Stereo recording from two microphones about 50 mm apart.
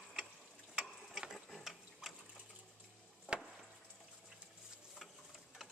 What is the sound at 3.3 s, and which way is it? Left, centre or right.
Chop, right.